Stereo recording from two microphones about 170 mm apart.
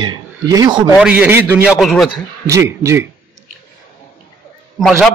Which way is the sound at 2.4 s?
15° right (ahead or behind).